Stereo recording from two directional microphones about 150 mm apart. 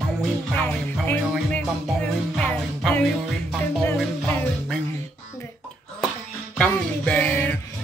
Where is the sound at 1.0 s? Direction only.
10° left (ahead or behind).